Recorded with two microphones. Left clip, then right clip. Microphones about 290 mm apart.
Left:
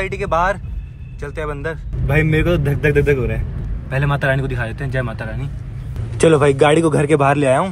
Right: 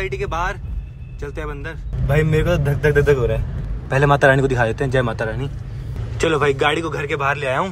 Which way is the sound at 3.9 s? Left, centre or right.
Centre.